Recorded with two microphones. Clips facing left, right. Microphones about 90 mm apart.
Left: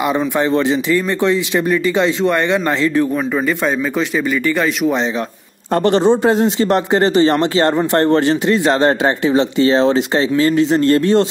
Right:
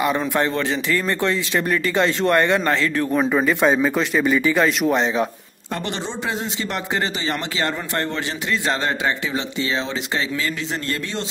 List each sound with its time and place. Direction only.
0.0 s speech: 10° left (ahead or behind)
2.8 s speech: 15° left (ahead or behind)
3.1 s speech: centre (ahead or behind)
5.8 s speech: 45° left (ahead or behind)